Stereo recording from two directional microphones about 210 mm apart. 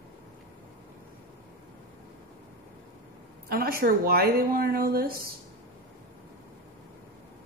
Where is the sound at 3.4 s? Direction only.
45° right (ahead or behind).